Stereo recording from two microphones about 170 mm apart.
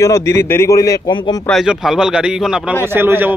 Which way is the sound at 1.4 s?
Centre (ahead or behind).